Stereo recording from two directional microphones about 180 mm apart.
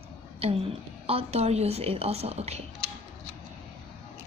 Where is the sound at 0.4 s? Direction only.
35° right (ahead or behind).